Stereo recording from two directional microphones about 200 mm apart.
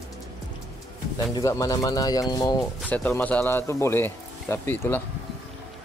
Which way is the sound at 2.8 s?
10° left (ahead or behind).